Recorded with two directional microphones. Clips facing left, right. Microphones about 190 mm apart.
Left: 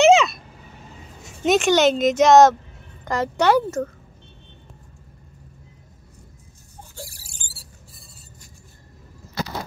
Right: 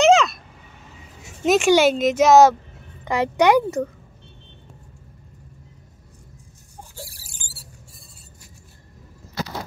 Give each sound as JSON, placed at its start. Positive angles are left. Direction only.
{"t": 0.0, "sound": "vehicle", "side_deg": 0}
{"t": 1.4, "sound": "speech", "side_deg": -5}